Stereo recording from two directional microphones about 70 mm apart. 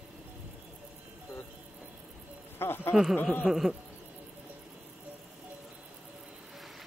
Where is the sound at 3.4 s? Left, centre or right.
Centre.